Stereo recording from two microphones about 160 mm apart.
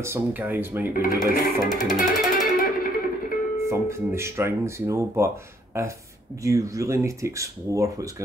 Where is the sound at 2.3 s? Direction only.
65° left (ahead or behind).